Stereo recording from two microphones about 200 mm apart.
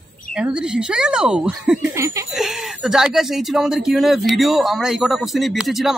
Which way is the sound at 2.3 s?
Centre (ahead or behind).